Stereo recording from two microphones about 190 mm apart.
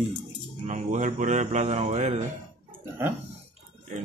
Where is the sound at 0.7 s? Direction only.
40° right (ahead or behind).